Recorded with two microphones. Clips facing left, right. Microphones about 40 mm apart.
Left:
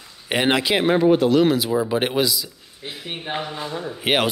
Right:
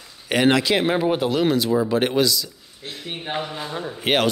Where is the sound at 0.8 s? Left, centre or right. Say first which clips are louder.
Left 3 dB; centre.